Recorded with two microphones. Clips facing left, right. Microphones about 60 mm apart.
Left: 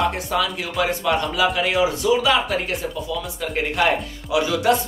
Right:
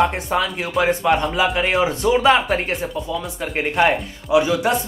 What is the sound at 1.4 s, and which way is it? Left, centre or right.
Speech, centre.